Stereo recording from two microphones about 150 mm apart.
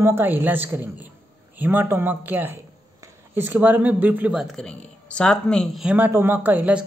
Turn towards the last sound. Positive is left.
turn(degrees=-10)  # may be behind; listen again after turning